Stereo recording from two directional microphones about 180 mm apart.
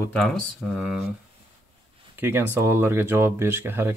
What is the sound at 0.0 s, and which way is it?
Speech, 5° left (ahead or behind).